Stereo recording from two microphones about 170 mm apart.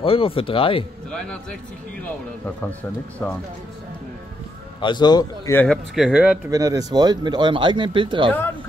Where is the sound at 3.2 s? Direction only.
10° left (ahead or behind).